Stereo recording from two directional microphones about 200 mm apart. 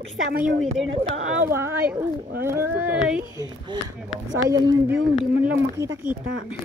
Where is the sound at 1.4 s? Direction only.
15° right (ahead or behind).